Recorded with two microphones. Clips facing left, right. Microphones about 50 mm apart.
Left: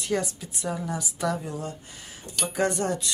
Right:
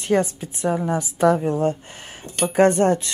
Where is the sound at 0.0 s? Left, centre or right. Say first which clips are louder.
Right 8 dB; right.